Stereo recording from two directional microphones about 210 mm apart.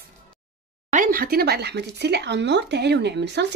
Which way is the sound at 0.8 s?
40° right (ahead or behind).